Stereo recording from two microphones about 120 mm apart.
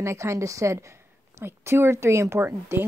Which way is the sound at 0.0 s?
25° right (ahead or behind).